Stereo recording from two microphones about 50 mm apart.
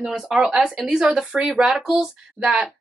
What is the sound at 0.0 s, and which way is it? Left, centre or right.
Speech, centre.